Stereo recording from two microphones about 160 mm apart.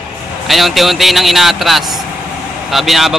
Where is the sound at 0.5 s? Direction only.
Centre (ahead or behind).